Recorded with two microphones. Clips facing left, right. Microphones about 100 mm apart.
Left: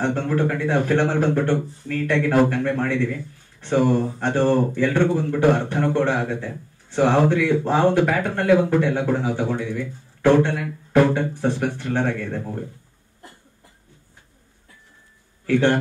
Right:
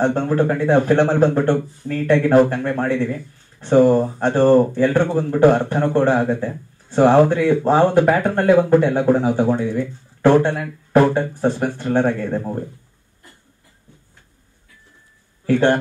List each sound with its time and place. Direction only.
0.0 s speech: 35° right (ahead or behind)
15.4 s speech: 40° right (ahead or behind)